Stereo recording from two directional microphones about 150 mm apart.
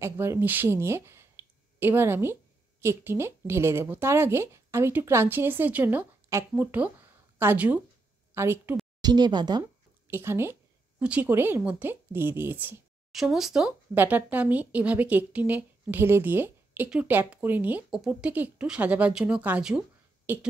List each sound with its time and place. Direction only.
0.0 s speech: 15° right (ahead or behind)
9.0 s speech: 30° right (ahead or behind)
10.0 s a woman's voice: 15° right (ahead or behind)
13.1 s speech: centre (ahead or behind)